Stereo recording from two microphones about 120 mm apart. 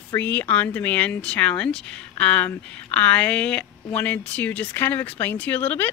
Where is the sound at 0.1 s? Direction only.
15° left (ahead or behind).